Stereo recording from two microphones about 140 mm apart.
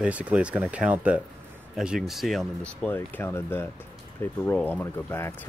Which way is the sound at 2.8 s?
15° left (ahead or behind).